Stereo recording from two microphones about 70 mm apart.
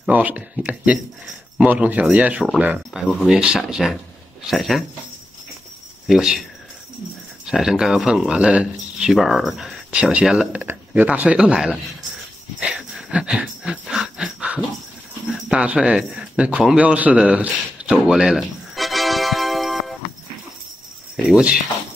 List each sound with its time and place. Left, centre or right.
0.1 s speech: right
2.9 s speech: centre
3.3 s speech: centre
6.0 s speech: centre
7.4 s speech: centre
9.2 s speech: centre
9.8 s speech: centre
13.1 s a sound: centre
15.3 s speech: centre
16.6 s a sound: centre
21.3 s speech: centre